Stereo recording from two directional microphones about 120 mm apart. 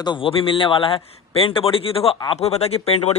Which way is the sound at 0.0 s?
45° left (ahead or behind).